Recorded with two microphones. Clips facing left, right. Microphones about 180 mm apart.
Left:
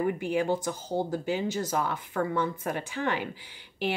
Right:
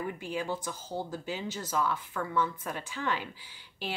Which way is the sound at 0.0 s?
55° left (ahead or behind).